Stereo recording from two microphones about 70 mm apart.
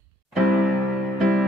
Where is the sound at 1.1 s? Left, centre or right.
Centre.